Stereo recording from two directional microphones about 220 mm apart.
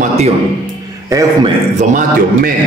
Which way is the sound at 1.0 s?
15° right (ahead or behind).